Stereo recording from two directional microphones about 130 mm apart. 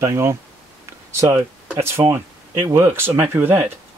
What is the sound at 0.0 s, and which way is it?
Speech, 20° right (ahead or behind).